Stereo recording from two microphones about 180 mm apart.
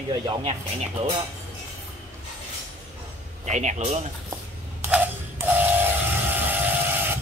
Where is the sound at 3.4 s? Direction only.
40° right (ahead or behind).